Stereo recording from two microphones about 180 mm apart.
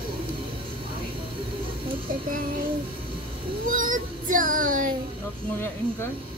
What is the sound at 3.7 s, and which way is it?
Child singing, 50° right (ahead or behind).